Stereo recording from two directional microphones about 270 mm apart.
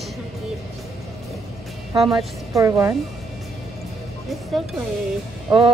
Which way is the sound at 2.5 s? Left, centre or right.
Centre.